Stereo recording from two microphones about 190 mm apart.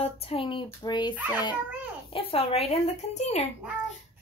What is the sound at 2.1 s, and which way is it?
A woman's voice, 30° left (ahead or behind).